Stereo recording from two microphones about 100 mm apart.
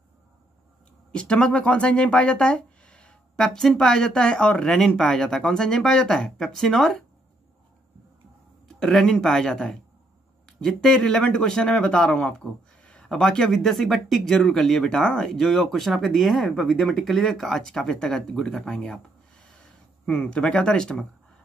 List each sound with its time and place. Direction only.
1.1 s speech: 10° left (ahead or behind)
8.6 s speech: 5° left (ahead or behind)
20.1 s speech: 10° left (ahead or behind)